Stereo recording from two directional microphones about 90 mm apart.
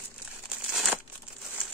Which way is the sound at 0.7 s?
Centre (ahead or behind).